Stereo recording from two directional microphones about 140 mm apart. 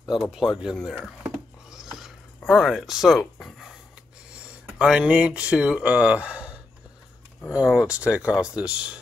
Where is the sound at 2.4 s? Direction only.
Centre (ahead or behind).